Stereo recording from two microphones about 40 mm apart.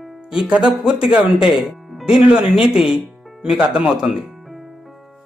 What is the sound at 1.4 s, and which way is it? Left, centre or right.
Speech, centre.